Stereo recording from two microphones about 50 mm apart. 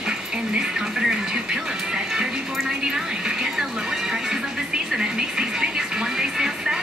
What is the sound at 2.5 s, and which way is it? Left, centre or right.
Music, centre.